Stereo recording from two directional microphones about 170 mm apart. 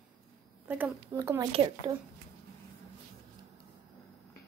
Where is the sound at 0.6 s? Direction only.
10° right (ahead or behind).